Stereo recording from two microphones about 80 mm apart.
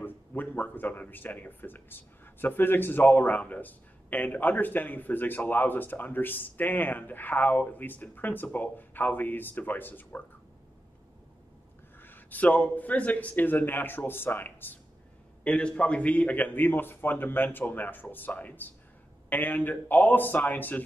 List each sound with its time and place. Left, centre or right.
0.0 s speech: left
12.0 s speech: left